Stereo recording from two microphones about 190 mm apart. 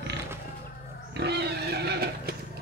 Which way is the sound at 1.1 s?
60° right (ahead or behind).